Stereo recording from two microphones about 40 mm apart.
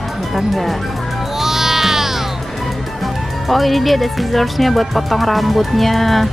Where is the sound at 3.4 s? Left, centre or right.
Centre.